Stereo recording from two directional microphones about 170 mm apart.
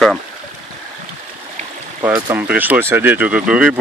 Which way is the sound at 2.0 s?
10° right (ahead or behind).